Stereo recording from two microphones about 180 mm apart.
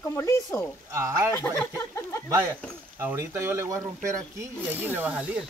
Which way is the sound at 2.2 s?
15° right (ahead or behind).